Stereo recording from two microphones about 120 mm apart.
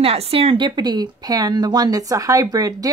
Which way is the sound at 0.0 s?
55° right (ahead or behind).